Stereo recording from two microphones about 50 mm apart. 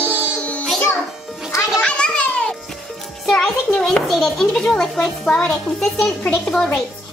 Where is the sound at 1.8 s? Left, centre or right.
Left.